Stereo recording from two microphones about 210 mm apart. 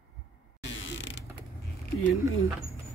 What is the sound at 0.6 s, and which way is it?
Mechanisms, 60° left (ahead or behind).